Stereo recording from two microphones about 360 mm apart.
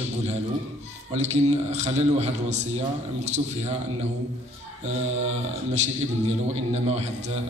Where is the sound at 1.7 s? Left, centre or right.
Centre.